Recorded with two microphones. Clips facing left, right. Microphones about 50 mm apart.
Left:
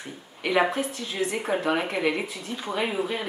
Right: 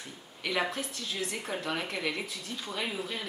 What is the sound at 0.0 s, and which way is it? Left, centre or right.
Speech, left.